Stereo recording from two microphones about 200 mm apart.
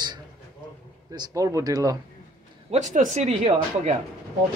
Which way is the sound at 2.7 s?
35° right (ahead or behind).